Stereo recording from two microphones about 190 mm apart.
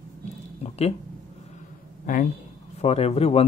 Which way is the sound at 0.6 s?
35° left (ahead or behind).